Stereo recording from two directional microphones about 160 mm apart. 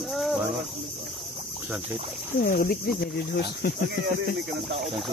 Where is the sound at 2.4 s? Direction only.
70° left (ahead or behind).